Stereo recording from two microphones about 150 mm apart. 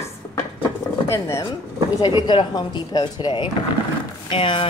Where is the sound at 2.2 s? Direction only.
30° left (ahead or behind).